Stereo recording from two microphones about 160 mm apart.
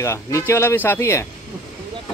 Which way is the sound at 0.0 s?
20° left (ahead or behind).